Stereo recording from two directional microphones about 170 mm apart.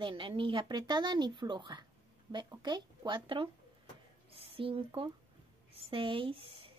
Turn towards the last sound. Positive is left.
turn(degrees=-30)  # may be behind; listen again after turning